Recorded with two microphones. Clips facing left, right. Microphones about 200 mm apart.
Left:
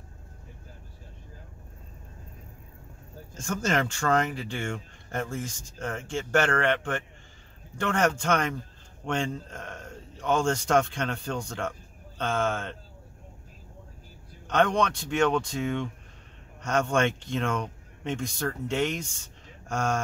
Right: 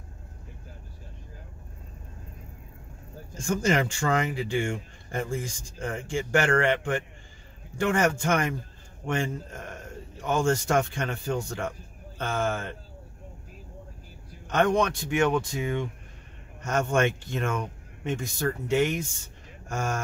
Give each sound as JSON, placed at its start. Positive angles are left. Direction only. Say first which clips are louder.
{"t": 3.3, "sound": "speech", "louder": "right 3 dB", "side_deg": -10}
{"t": 14.5, "sound": "speech", "louder": "right 1 dB", "side_deg": -5}